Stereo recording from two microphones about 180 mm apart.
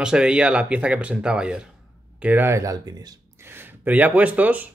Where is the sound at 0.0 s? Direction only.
5° right (ahead or behind).